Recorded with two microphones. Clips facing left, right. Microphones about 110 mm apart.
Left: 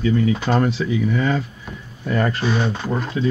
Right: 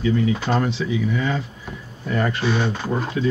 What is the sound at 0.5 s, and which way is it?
Speech, 45° left (ahead or behind).